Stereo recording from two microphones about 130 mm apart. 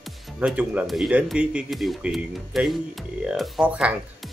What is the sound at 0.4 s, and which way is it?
Speech, 10° right (ahead or behind).